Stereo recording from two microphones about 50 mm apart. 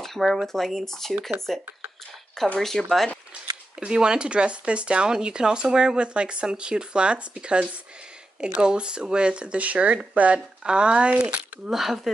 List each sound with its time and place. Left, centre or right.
0.0 s a sound: centre
0.5 s speech: centre
3.8 s speech: centre
11.7 s speech: centre